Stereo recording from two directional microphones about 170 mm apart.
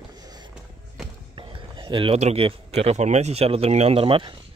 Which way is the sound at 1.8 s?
30° right (ahead or behind).